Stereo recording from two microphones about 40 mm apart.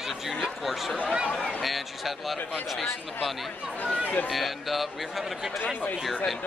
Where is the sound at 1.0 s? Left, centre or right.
Right.